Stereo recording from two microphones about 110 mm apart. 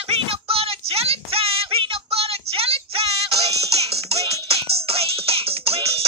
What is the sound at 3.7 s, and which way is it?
Music, 65° right (ahead or behind).